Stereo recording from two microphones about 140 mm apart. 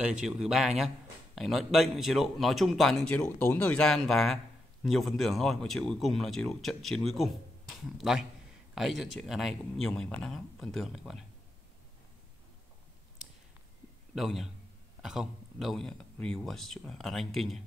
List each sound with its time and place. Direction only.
0.0 s a man's voice: 5° right (ahead or behind)
14.1 s a man's voice: centre (ahead or behind)